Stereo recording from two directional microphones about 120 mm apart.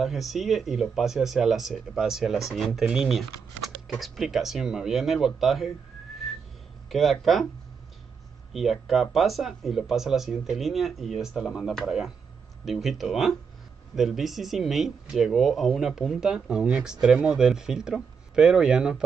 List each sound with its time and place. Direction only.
0.0 s speech: centre (ahead or behind)
6.9 s speech: centre (ahead or behind)
8.5 s speech: centre (ahead or behind)